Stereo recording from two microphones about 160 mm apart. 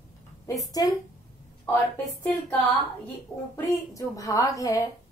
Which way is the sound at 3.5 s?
20° left (ahead or behind).